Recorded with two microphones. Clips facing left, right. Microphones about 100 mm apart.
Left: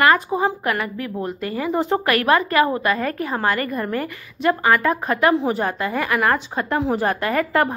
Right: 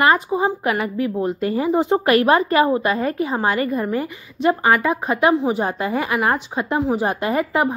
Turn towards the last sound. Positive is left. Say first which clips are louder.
# even
turn(degrees=-15)  # may be behind; listen again after turning